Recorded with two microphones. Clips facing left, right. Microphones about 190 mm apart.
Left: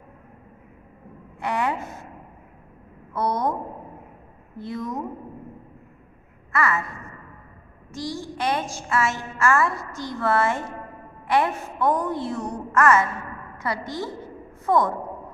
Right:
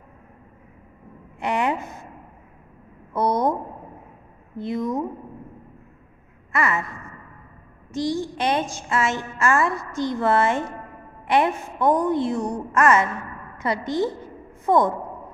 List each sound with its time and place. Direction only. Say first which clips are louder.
1.4 s a woman's voice: right 2 dB; 20° right (ahead or behind)
3.1 s a woman's voice: right 3 dB; 20° right (ahead or behind)
4.6 s a woman's voice: right 5 dB; 20° right (ahead or behind)
6.5 s a sound: even; 20° right (ahead or behind)
7.9 s a woman's voice: right 7 dB; 20° right (ahead or behind)